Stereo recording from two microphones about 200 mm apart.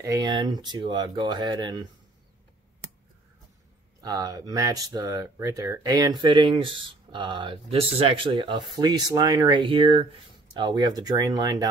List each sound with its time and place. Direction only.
0.0 s speech: 20° right (ahead or behind)
4.0 s speech: 20° right (ahead or behind)